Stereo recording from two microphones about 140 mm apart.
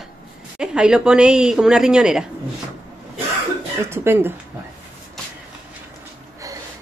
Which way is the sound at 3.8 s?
15° right (ahead or behind).